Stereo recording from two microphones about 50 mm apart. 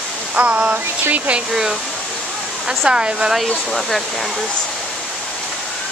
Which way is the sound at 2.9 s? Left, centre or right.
Centre.